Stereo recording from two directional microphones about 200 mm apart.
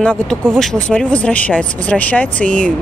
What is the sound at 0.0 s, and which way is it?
Speech, 5° left (ahead or behind).